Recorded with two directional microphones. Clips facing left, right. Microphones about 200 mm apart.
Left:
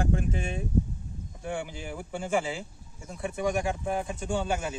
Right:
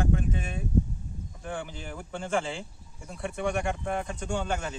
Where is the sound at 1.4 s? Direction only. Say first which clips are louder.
Left 2 dB; 10° left (ahead or behind).